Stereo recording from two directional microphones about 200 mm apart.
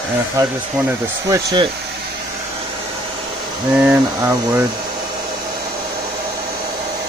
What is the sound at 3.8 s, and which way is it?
Speech, 10° right (ahead or behind).